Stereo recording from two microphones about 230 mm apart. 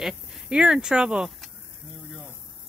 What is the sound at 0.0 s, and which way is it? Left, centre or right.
Speech, centre.